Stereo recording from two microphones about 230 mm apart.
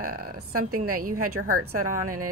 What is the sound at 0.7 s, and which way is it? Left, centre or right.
Speech, right.